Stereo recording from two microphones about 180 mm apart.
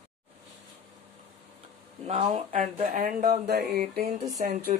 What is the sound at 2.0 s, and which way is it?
Speech, 40° right (ahead or behind).